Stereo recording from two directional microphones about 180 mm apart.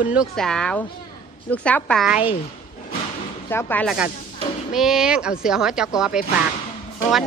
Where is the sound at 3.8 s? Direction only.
5° right (ahead or behind).